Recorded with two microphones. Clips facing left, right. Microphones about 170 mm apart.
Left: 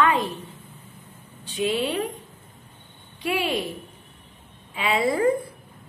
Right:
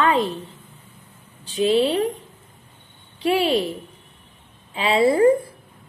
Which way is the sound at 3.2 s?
30° right (ahead or behind).